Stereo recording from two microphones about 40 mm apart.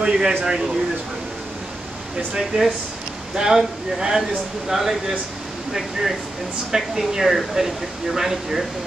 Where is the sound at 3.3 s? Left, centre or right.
Centre.